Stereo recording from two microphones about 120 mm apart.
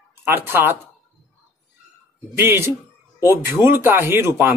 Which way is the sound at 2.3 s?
20° right (ahead or behind).